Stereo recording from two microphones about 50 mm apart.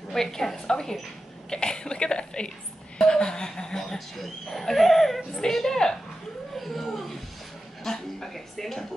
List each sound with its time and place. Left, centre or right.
0.1 s a woman's voice: centre
6.5 s a sound: centre
7.8 s speech: centre